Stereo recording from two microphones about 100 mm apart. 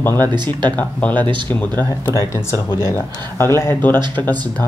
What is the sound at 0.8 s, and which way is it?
Speech, 15° left (ahead or behind).